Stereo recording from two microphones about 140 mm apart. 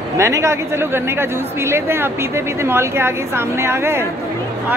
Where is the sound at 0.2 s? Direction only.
20° right (ahead or behind).